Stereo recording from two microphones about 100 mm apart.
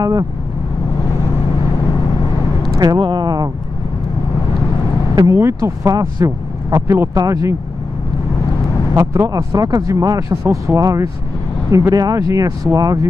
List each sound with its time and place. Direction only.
2.8 s speech: 45° right (ahead or behind)
5.1 s speech: 30° right (ahead or behind)
8.9 s speech: 30° right (ahead or behind)